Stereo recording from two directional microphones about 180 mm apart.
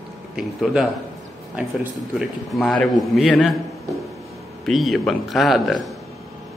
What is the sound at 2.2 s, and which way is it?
Speech, centre (ahead or behind).